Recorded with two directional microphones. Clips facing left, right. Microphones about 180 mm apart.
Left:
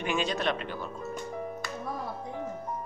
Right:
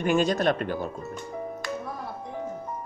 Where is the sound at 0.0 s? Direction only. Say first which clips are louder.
Right 7 dB; 45° right (ahead or behind).